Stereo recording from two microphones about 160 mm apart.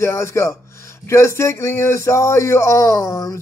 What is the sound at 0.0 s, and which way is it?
Speech, 15° left (ahead or behind).